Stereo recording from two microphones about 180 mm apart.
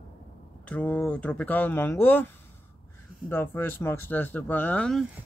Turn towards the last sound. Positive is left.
turn(degrees=5)  # may be behind; listen again after turning